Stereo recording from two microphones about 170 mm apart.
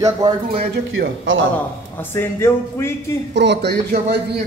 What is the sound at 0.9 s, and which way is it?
Speech, 90° right.